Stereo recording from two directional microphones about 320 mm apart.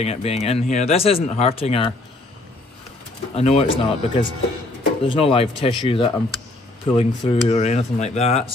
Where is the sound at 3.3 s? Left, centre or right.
Centre.